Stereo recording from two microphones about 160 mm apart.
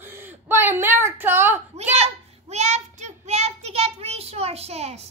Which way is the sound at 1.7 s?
45° right (ahead or behind).